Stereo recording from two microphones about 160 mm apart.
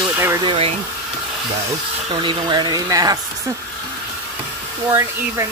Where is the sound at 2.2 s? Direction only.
30° right (ahead or behind).